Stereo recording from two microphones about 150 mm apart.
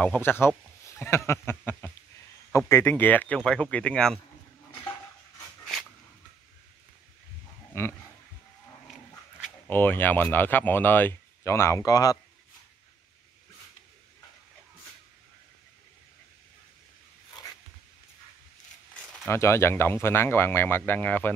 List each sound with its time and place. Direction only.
0.0 s speech: 10° left (ahead or behind)
7.7 s speech: 15° left (ahead or behind)
9.7 s speech: 15° left (ahead or behind)
19.2 s speech: 15° left (ahead or behind)